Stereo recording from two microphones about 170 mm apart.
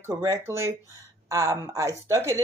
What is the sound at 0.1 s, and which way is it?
Speech, 20° right (ahead or behind).